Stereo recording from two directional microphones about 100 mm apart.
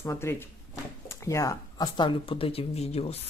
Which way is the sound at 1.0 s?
30° left (ahead or behind).